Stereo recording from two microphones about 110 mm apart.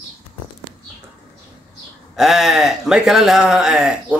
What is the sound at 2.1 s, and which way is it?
A man's voice, centre (ahead or behind).